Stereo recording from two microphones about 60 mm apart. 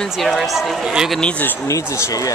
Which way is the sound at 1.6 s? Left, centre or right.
Left.